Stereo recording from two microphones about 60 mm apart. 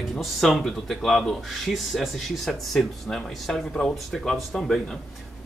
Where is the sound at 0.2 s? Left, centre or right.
Centre.